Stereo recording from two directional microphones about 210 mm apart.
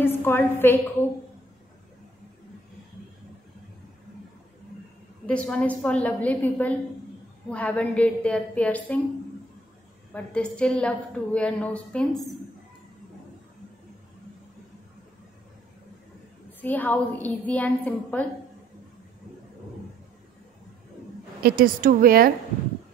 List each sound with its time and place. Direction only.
0.0 s a woman's voice: 10° left (ahead or behind)
5.2 s a woman's voice: 5° left (ahead or behind)
10.1 s a woman's voice: 5° left (ahead or behind)
16.6 s a woman's voice: 10° left (ahead or behind)
21.4 s a woman's voice: 45° right (ahead or behind)